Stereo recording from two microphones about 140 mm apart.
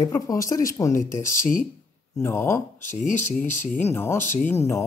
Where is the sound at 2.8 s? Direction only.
60° left (ahead or behind).